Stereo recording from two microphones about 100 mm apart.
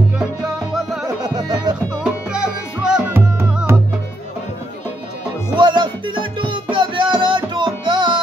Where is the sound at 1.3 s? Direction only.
40° right (ahead or behind).